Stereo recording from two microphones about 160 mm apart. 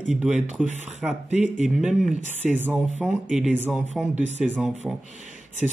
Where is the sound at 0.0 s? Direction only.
Centre (ahead or behind).